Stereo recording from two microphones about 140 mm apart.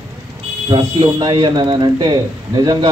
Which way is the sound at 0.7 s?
35° right (ahead or behind).